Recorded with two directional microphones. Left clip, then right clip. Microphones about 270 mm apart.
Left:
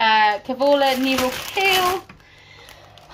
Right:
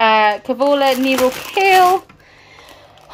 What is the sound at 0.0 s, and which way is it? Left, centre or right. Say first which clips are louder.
Speech: right 4 dB; centre.